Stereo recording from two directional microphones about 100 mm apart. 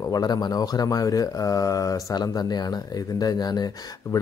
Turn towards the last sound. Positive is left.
turn(degrees=35)  # may be behind; listen again after turning